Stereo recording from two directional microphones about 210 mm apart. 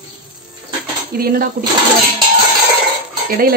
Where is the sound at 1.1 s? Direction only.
45° right (ahead or behind).